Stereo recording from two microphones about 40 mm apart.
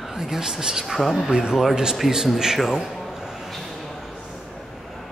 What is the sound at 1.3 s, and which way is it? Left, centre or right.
Speech, right.